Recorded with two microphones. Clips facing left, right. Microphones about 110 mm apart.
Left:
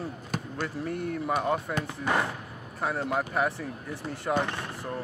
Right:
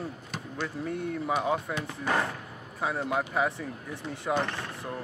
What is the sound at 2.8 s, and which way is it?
Speech, centre (ahead or behind).